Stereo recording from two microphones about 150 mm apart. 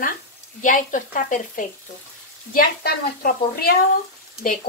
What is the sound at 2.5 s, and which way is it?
A woman's voice, 80° left.